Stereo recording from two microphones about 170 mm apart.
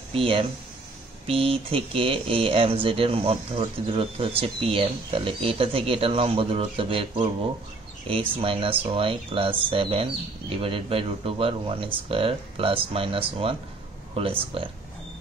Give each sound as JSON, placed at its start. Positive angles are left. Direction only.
{"t": 0.1, "sound": "speech", "side_deg": -35}